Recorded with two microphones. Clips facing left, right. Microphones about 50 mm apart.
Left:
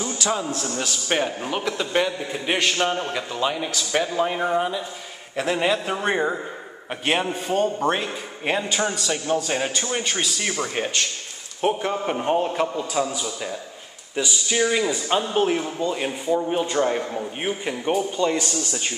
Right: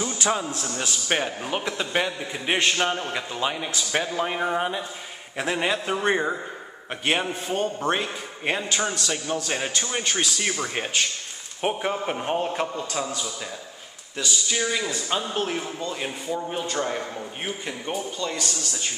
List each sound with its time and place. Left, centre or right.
0.3 s a man's voice: centre
4.6 s speech: right
5.3 s a man's voice: centre; by 18.9 s left